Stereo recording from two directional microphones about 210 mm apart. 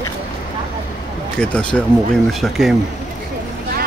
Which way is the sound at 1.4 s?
5° left (ahead or behind).